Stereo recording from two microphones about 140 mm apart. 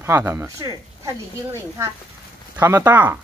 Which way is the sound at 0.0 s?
15° right (ahead or behind).